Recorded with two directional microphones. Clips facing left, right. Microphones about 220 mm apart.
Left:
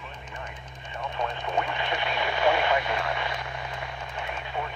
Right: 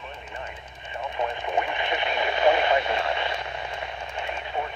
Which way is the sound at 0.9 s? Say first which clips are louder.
Right 2 dB; 20° right (ahead or behind).